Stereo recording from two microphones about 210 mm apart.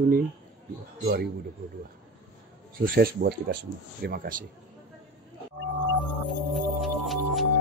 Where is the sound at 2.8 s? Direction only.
45° right (ahead or behind).